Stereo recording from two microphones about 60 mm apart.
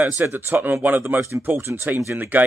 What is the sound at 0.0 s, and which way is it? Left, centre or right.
Speech, right.